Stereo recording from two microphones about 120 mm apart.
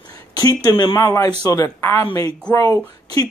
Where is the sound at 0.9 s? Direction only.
20° left (ahead or behind).